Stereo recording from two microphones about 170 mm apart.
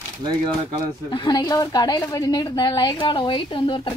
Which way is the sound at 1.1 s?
25° left (ahead or behind).